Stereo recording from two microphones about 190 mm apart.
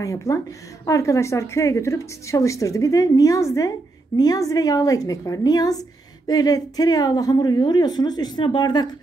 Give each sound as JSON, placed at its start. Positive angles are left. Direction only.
{"t": 0.0, "sound": "a woman's voice", "side_deg": 15}